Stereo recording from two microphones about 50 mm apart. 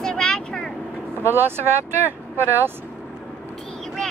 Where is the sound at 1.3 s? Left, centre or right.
Right.